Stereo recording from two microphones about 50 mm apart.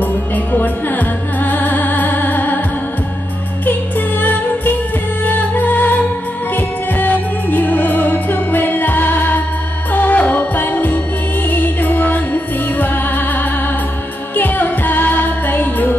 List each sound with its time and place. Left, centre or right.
0.0 s music: left
4.2 s music: left